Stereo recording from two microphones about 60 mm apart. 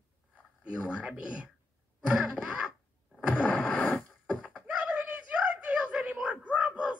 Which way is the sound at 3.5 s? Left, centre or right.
Left.